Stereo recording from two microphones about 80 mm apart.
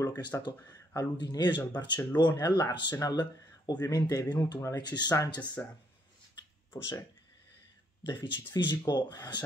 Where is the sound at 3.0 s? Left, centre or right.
Left.